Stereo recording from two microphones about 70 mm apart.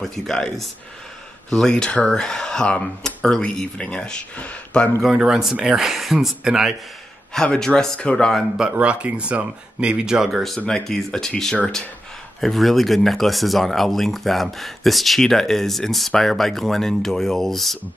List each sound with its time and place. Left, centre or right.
0.0 s speech: centre
5.1 s speech: centre
7.5 s speech: centre
8.5 s speech: centre